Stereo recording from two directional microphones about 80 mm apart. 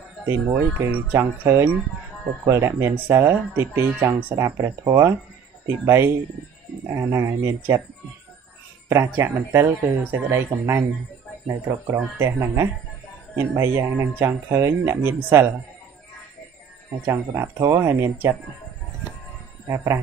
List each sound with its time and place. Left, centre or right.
0.3 s speech: right
8.8 s speech: right
17.0 s speech: right
17.7 s speech: right
19.7 s speech: right